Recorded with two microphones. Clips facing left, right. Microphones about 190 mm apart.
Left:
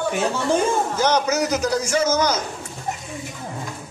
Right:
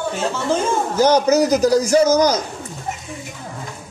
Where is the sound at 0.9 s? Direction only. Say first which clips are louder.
Right 10 dB; 35° right (ahead or behind).